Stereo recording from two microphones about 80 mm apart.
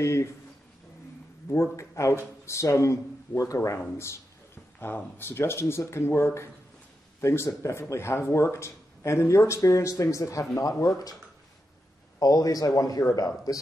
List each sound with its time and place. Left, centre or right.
0.0 s speech: left
1.5 s speech: left
4.7 s speech: left
12.2 s speech: left